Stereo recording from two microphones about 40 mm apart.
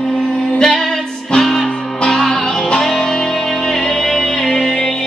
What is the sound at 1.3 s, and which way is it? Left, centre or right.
Music, centre.